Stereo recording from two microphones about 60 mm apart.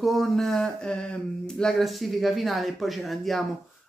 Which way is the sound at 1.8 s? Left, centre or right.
Centre.